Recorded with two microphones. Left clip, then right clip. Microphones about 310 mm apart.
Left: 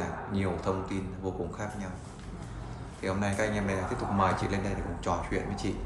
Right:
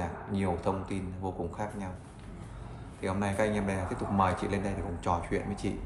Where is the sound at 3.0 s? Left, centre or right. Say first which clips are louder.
Even; right.